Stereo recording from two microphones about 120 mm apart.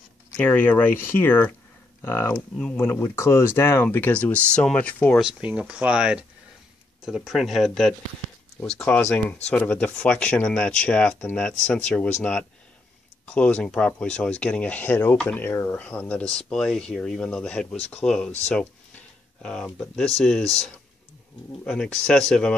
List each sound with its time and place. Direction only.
0.4 s speech: 15° left (ahead or behind)
2.3 s speech: 10° left (ahead or behind)
2.8 s speech: 20° left (ahead or behind)
5.2 s speech: 10° right (ahead or behind); by 18.3 s 5° left (ahead or behind)
18.5 s a sound: 10° left (ahead or behind)
20.2 s speech: 5° left (ahead or behind)